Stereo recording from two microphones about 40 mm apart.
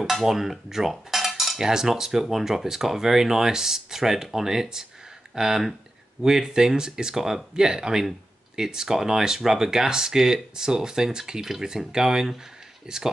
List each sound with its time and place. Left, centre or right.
0.0 s cutlery: centre
1.7 s speech: centre